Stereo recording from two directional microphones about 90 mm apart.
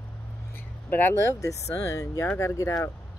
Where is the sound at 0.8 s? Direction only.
20° left (ahead or behind).